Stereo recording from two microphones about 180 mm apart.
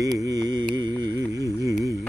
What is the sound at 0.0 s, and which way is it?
Music, 20° right (ahead or behind).